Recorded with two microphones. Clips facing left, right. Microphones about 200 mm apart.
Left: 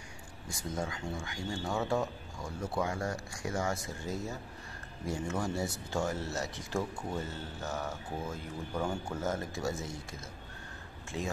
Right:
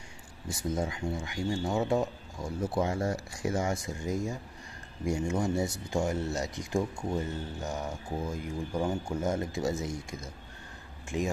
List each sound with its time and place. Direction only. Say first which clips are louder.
0.5 s speech: right 5 dB; 20° right (ahead or behind)
11.1 s speech: right 6 dB; 20° right (ahead or behind)